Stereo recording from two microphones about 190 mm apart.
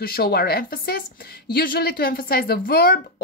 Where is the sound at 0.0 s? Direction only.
55° left (ahead or behind).